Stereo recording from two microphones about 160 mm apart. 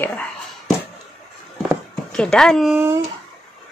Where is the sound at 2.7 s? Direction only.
15° right (ahead or behind).